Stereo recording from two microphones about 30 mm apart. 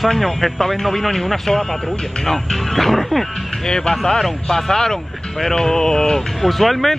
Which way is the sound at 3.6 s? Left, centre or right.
Left.